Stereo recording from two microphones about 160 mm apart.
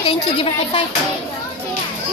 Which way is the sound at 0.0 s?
35° left (ahead or behind).